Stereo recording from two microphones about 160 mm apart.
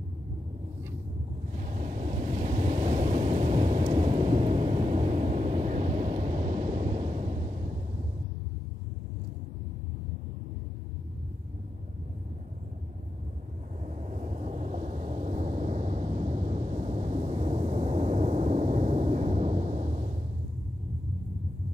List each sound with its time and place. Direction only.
1.5 s waves: 50° right (ahead or behind)
3.8 s thunder: 35° right (ahead or behind)
13.8 s vehicle: 45° right (ahead or behind)